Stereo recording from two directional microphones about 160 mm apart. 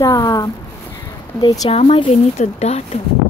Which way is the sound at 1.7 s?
35° left (ahead or behind).